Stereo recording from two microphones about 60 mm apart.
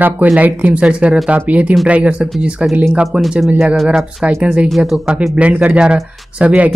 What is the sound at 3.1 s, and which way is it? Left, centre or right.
Speech, centre.